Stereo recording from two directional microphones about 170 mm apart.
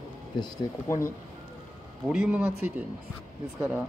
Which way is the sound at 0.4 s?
15° left (ahead or behind).